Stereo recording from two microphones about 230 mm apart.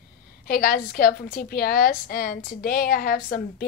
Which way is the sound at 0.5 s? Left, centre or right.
Left.